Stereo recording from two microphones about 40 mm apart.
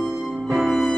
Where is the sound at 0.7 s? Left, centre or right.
Centre.